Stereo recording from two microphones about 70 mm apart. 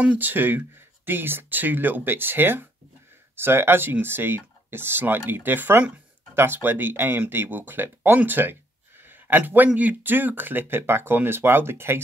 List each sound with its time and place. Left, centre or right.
0.0 s speech: right
9.0 s a sound: right
9.8 s speech: right